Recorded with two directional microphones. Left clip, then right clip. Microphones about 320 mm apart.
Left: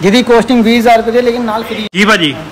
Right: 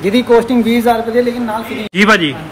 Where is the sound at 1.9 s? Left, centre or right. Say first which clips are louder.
Left 1 dB; centre.